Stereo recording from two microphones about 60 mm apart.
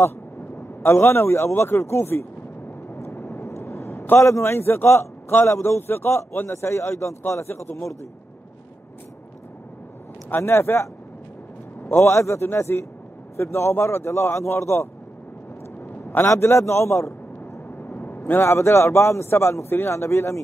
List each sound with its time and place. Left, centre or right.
0.8 s a man's voice: left
3.0 s a sound: left
4.2 s a man's voice: left
10.3 s a man's voice: left
12.0 s a man's voice: left
17.6 s vehicle: left
18.4 s a man's voice: left